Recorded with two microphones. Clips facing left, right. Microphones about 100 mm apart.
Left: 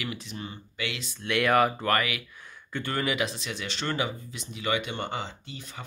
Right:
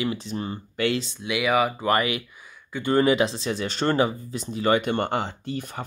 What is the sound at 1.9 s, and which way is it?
Speech, 25° right (ahead or behind).